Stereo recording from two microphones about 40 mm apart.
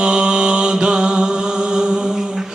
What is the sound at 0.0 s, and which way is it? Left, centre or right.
Mantra, right.